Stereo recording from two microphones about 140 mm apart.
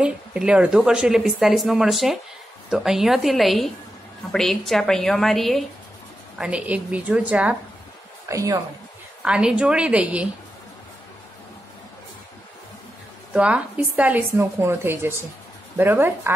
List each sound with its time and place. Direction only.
0.0 s a woman's voice: 10° right (ahead or behind)
8.3 s a woman's voice: 20° right (ahead or behind)
9.2 s a woman's voice: 5° right (ahead or behind)
13.3 s a woman's voice: 10° right (ahead or behind)